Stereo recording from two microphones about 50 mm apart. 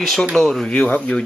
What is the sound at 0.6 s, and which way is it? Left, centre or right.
Speech, centre.